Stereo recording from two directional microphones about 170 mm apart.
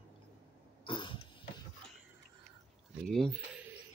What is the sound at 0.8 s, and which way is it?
Cough, 30° left (ahead or behind).